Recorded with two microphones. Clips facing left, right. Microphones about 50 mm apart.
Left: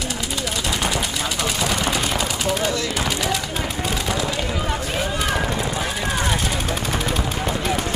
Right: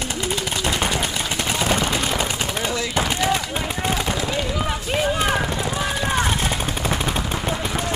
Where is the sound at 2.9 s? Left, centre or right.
Right.